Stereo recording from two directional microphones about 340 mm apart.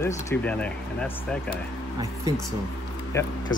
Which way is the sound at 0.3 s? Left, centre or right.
Centre.